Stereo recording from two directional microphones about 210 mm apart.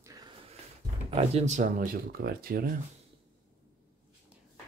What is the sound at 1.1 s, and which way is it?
Speech, 30° right (ahead or behind).